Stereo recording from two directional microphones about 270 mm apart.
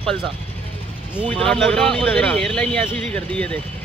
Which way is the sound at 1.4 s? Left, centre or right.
Centre.